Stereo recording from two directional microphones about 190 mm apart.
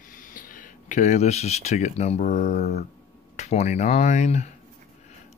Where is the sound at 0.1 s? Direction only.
45° left (ahead or behind).